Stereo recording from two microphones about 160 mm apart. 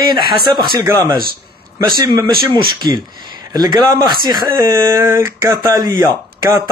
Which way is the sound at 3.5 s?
25° right (ahead or behind).